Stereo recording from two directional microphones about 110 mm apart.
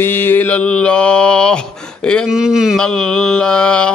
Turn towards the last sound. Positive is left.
turn(degrees=10)  # may be behind; listen again after turning